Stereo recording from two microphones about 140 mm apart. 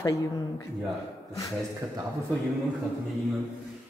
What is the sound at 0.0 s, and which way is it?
Speech, 25° left (ahead or behind).